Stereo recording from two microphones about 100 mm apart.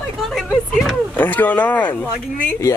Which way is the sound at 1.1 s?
20° left (ahead or behind).